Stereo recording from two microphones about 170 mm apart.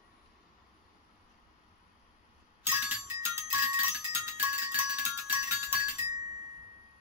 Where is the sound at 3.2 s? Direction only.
15° right (ahead or behind).